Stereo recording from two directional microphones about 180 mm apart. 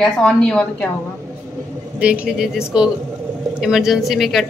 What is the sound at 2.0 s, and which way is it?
A woman's voice, 5° right (ahead or behind).